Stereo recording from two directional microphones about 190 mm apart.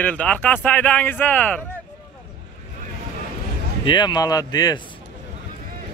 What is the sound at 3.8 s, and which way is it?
Speech, 25° left (ahead or behind).